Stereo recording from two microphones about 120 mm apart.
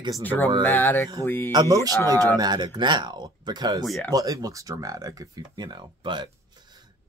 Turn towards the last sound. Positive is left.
turn(degrees=-35)  # may be behind; listen again after turning